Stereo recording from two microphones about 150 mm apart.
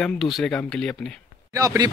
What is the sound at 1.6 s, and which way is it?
Speech, 25° right (ahead or behind).